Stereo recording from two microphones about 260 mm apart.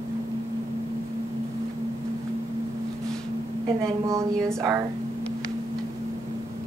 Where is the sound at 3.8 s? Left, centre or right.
Centre.